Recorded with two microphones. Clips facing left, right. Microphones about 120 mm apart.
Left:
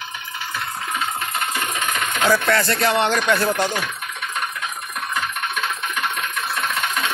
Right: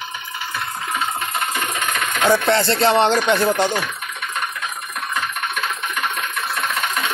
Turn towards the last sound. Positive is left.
turn(degrees=-5)  # may be behind; listen again after turning